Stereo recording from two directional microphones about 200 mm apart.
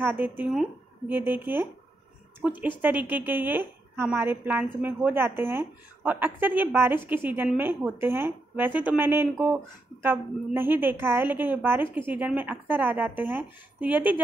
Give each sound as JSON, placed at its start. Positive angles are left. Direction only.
{"t": 0.0, "sound": "a woman's voice", "side_deg": -10}